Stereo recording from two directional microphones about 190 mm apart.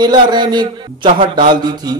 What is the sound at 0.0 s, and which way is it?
A man's voice, 20° right (ahead or behind).